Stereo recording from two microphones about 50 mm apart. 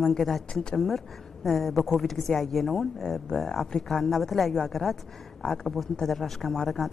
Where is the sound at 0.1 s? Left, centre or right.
Centre.